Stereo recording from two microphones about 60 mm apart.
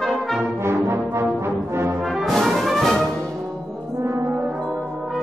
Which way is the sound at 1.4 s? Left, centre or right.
Right.